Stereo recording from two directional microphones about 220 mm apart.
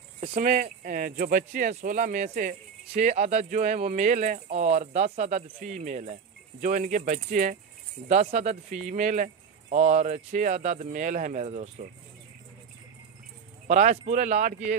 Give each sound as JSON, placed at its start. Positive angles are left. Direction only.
{"t": 0.4, "sound": "speech", "side_deg": -35}
{"t": 13.7, "sound": "speech", "side_deg": -35}